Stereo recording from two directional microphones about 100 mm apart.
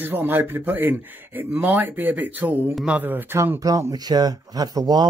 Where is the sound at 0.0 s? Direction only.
20° right (ahead or behind).